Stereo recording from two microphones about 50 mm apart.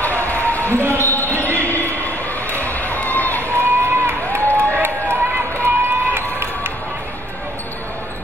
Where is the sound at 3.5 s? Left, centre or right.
Right.